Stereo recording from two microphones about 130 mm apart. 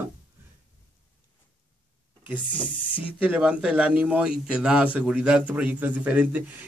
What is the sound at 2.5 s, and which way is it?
Speech, 40° left (ahead or behind).